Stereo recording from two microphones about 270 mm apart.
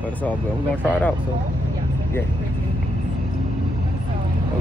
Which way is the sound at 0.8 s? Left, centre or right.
Centre.